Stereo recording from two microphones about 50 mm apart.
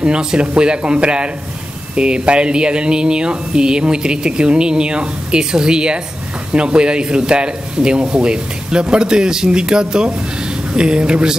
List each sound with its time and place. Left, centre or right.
0.0 s speech: centre